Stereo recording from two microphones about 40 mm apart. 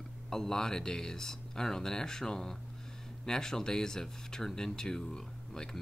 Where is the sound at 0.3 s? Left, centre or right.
Centre.